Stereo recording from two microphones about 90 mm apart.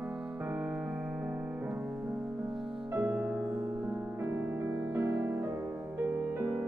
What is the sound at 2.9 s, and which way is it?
Music, 20° right (ahead or behind).